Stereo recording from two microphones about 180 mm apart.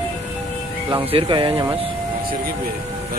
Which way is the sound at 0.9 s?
30° right (ahead or behind).